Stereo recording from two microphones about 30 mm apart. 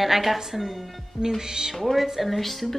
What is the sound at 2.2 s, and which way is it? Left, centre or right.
Speech, centre.